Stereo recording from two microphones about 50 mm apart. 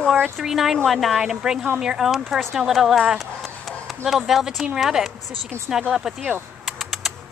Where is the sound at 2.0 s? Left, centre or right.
Centre.